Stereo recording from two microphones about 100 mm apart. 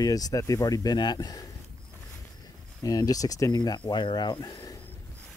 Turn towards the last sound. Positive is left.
turn(degrees=50)  # may be behind; listen again after turning